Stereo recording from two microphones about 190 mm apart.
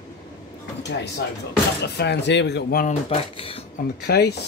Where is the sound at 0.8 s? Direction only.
65° left (ahead or behind).